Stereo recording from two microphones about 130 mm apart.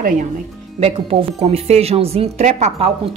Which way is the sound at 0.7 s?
45° right (ahead or behind).